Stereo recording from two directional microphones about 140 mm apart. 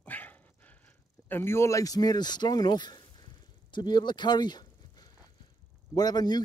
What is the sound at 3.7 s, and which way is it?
Speech, 30° left (ahead or behind).